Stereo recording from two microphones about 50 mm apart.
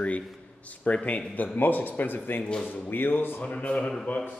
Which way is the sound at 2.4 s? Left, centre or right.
Centre.